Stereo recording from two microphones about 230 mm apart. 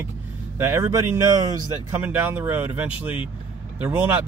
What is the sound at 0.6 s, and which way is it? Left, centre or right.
Speech, centre.